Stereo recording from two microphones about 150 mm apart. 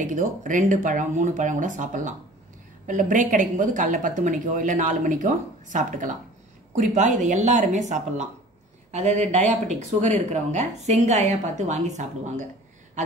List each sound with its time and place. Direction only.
0.0 s speech: 55° right (ahead or behind)